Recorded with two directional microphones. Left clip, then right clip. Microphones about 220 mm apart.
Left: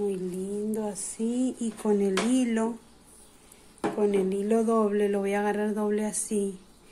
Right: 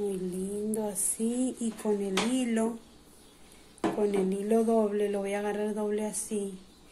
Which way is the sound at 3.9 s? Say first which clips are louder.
Left 4 dB; 15° left (ahead or behind).